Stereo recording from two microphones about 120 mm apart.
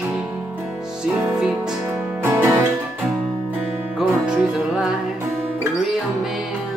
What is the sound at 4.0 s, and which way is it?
Music, 5° right (ahead or behind).